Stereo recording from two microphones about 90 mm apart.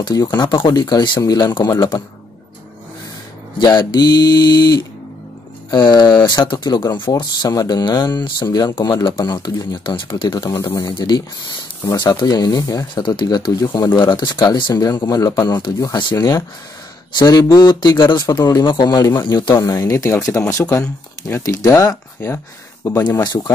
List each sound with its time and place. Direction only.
0.0 s speech: 50° left (ahead or behind)
3.5 s speech: 55° left (ahead or behind)
10.5 s speech: 40° left (ahead or behind)
11.0 s speech: 55° left (ahead or behind)
12.9 s speech: 60° left (ahead or behind)
19.5 s speech: 35° left (ahead or behind)
23.2 s speech: 45° left (ahead or behind)